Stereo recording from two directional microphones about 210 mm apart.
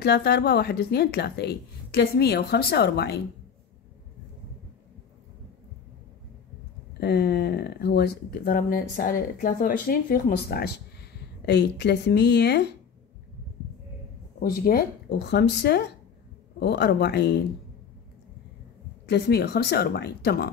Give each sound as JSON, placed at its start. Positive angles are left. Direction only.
{"t": 0.0, "sound": "speech", "side_deg": 50}
{"t": 6.9, "sound": "speech", "side_deg": 50}
{"t": 14.4, "sound": "speech", "side_deg": 45}
{"t": 19.0, "sound": "speech", "side_deg": 50}